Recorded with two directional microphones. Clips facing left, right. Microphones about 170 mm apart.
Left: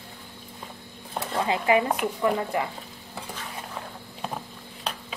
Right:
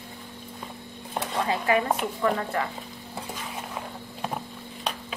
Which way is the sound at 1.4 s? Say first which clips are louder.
Left 2 dB; 20° left (ahead or behind).